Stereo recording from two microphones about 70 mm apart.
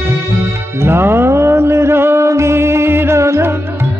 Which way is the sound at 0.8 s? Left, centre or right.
Right.